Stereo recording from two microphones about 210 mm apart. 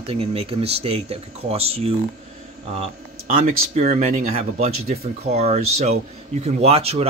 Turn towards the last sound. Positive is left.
turn(degrees=-30)  # may be behind; listen again after turning